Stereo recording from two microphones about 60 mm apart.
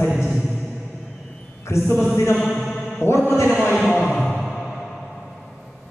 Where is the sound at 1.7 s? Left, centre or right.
Left.